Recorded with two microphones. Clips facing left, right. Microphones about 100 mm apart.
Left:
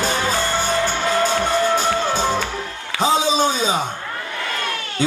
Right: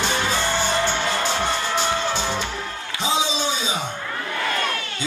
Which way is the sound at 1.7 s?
45° left (ahead or behind).